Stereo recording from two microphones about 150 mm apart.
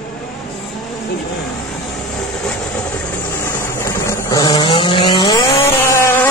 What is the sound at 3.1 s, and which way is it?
Vehicle, 15° left (ahead or behind).